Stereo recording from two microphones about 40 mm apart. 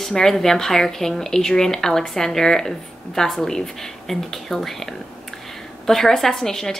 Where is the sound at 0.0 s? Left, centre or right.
Centre.